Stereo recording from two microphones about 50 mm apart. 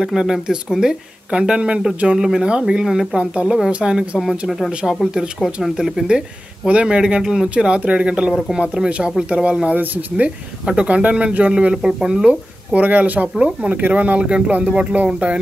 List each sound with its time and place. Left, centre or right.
0.0 s speech: centre
2.8 s speech: centre
3.2 s speech: right
4.2 s speech: centre
4.6 s speech: centre
5.4 s speech: centre; by 10.3 s right
10.6 s speech: centre
10.9 s speech: right
11.5 s speech: centre
12.8 s speech: right